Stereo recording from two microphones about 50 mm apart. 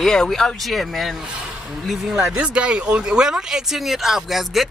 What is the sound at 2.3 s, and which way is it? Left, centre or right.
Speech, right.